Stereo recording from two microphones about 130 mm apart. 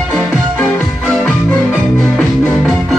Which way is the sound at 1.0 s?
Centre (ahead or behind).